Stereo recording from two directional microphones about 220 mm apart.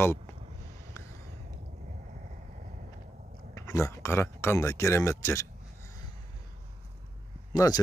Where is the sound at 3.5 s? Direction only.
15° left (ahead or behind).